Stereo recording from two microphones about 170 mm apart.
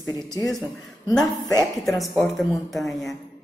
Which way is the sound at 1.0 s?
20° left (ahead or behind).